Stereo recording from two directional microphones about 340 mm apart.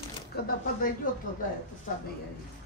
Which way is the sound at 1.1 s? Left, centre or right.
Left.